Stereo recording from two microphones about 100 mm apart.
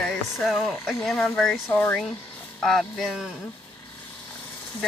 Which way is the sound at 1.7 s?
20° left (ahead or behind).